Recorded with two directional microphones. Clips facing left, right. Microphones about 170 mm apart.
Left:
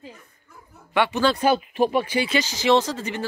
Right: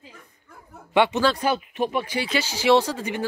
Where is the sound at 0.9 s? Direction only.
20° right (ahead or behind).